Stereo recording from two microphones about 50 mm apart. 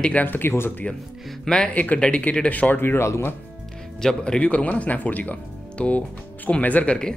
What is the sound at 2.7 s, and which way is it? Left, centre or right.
Speech, left.